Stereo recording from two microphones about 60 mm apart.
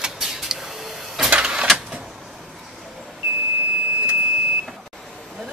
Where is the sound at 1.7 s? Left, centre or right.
Centre.